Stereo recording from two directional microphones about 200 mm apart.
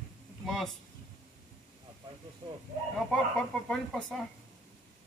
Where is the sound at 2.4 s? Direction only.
25° right (ahead or behind).